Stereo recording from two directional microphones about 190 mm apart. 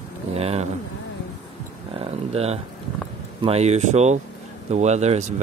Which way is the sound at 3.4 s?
35° right (ahead or behind).